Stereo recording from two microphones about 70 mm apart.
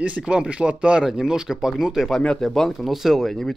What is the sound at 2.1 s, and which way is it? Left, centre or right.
Speech, centre.